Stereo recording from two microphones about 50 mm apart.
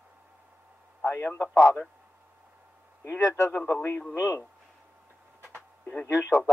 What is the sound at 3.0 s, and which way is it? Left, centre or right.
Speech, left.